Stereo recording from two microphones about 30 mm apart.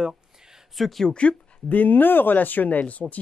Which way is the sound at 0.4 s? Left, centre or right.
Centre.